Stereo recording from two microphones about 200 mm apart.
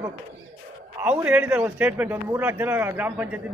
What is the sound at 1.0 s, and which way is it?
A man's voice, 10° right (ahead or behind).